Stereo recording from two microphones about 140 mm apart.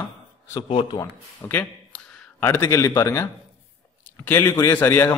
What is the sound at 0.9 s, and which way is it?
Speech, 30° left (ahead or behind).